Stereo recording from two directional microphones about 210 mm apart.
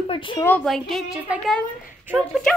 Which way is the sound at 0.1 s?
25° left (ahead or behind).